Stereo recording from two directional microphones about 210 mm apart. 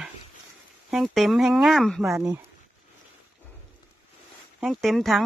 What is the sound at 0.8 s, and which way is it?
Speech, centre (ahead or behind).